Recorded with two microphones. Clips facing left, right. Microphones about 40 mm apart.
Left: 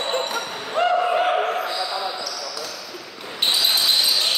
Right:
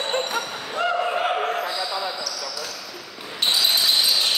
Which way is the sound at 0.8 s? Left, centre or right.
Left.